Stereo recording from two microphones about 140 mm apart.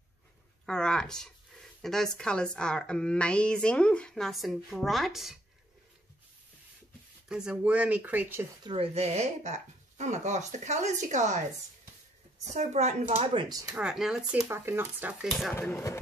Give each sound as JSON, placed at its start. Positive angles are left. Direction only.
{"t": 0.7, "sound": "speech", "side_deg": 5}
{"t": 7.2, "sound": "speech", "side_deg": -5}
{"t": 8.6, "sound": "speech", "side_deg": -45}
{"t": 12.4, "sound": "a woman's voice", "side_deg": -55}
{"t": 13.7, "sound": "speech", "side_deg": -5}
{"t": 14.4, "sound": "speech", "side_deg": -15}